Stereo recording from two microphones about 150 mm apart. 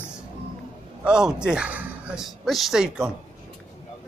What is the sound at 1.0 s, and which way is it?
A man's voice, 5° right (ahead or behind).